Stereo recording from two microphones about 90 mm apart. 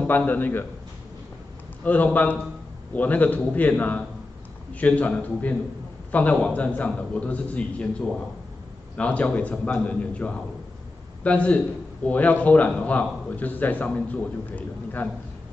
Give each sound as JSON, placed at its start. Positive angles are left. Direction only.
{"t": 0.0, "sound": "a man's voice", "side_deg": 20}
{"t": 1.8, "sound": "a man's voice", "side_deg": 15}
{"t": 8.9, "sound": "a man's voice", "side_deg": 15}